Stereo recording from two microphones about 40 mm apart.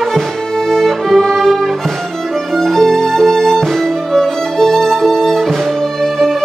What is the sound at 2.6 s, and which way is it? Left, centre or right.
Music, centre.